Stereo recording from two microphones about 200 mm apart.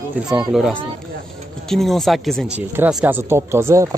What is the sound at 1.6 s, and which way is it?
Speech, centre (ahead or behind).